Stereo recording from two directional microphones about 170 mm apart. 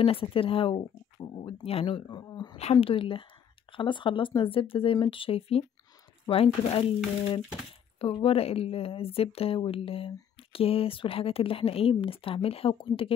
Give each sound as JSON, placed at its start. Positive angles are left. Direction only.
{"t": 0.0, "sound": "a woman's voice", "side_deg": 35}
{"t": 8.0, "sound": "a woman's voice", "side_deg": 30}